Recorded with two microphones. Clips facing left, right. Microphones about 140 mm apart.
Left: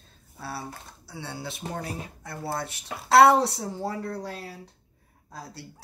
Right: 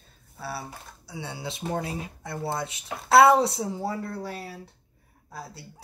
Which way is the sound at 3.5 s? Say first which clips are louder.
Right 2 dB; 5° right (ahead or behind).